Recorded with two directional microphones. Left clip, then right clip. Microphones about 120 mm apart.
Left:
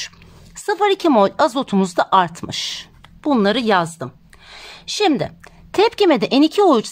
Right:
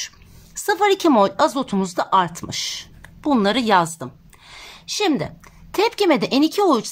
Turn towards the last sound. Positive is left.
turn(degrees=40)  # may be behind; listen again after turning